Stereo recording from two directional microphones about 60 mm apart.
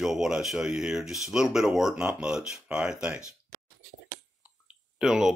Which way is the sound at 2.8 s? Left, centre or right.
Centre.